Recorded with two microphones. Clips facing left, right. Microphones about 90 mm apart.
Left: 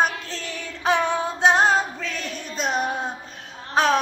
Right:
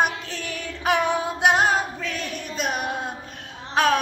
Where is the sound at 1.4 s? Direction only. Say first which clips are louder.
Left 2 dB; 25° left (ahead or behind).